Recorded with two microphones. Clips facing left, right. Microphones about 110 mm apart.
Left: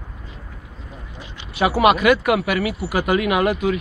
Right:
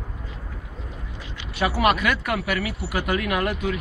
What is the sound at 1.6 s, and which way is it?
Speech, 15° left (ahead or behind).